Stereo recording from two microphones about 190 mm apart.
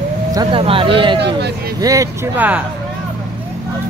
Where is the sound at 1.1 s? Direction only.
60° right (ahead or behind).